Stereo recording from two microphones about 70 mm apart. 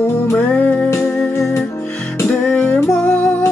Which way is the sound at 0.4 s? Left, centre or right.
Left.